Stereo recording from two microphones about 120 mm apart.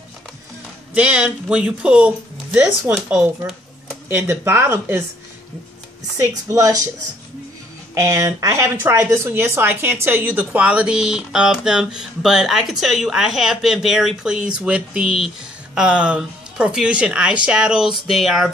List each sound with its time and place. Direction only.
0.9 s speech: 10° right (ahead or behind)
4.1 s speech: 20° right (ahead or behind)
6.1 s speech: 25° right (ahead or behind)
7.9 s speech: 25° right (ahead or behind); by 18.5 s centre (ahead or behind)